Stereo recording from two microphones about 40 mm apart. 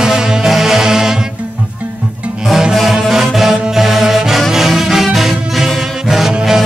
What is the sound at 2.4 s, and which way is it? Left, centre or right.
Music, centre.